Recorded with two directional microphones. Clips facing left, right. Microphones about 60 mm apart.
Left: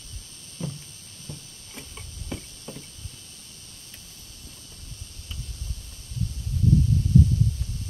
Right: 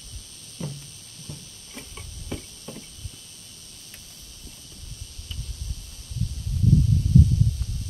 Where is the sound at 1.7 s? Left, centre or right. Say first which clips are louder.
Right 1 dB; centre.